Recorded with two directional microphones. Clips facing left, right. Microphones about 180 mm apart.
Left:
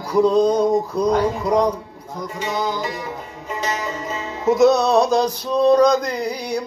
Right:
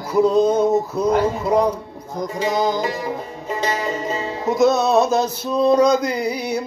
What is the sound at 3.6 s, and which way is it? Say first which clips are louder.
Music: right 3 dB; 30° right (ahead or behind).